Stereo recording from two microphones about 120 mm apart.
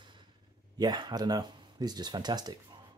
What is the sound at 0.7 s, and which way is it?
Speech, 35° right (ahead or behind).